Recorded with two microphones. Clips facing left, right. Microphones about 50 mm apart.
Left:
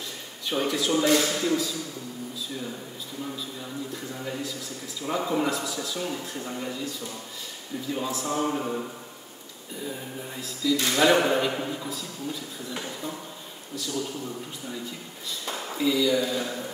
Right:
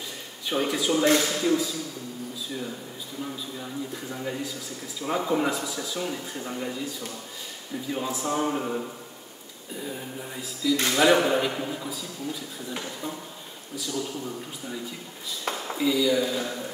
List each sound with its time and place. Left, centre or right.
0.5 s a man's voice: centre
3.9 s speech: centre
7.9 s speech: centre
10.4 s a man's voice: centre
13.7 s speech: centre
15.5 s a sound: right
15.8 s a man's voice: centre